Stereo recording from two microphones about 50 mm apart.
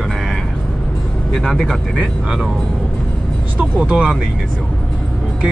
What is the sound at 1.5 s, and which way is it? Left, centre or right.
Speech, centre.